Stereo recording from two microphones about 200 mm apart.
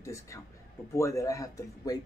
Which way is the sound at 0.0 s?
15° left (ahead or behind).